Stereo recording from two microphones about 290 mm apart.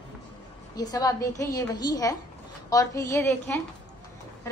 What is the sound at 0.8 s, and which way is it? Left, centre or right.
A woman's voice, centre.